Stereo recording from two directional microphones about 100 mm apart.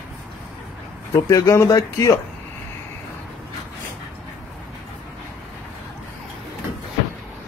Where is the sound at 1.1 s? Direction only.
30° left (ahead or behind).